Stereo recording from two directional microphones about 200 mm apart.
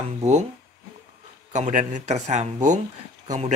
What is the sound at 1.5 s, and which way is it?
Speech, 35° right (ahead or behind).